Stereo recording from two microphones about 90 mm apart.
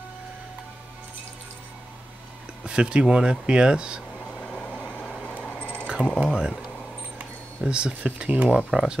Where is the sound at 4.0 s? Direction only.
10° left (ahead or behind).